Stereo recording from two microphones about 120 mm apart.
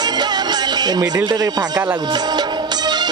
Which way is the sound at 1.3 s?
35° right (ahead or behind).